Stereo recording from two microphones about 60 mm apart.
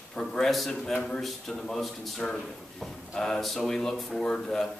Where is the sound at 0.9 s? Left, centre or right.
Centre.